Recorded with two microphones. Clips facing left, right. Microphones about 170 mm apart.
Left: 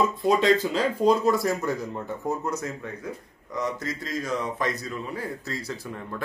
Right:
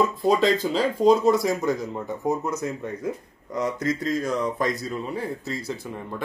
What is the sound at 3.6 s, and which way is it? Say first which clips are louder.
Speech: right 7 dB; 45° right (ahead or behind).